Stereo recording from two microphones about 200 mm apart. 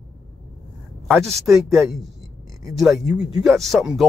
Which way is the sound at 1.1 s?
Centre (ahead or behind).